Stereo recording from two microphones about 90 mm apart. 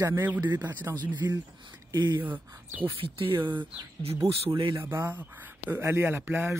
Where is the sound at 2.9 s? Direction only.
90° right.